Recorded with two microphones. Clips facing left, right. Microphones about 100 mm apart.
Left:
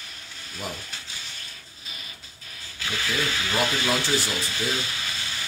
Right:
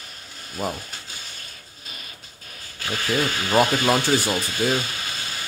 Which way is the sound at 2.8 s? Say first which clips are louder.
Right 4 dB; 40° right (ahead or behind).